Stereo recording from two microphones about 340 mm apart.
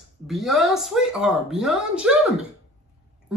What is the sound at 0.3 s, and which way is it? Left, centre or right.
Speech, centre.